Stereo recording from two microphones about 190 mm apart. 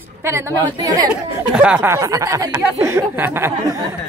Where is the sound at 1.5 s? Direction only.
5° right (ahead or behind).